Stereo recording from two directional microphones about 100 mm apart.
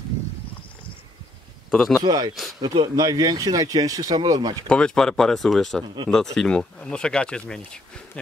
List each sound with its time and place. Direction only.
1.7 s speech: 5° left (ahead or behind)
2.0 s speech: 45° right (ahead or behind)
4.6 s speech: 10° left (ahead or behind)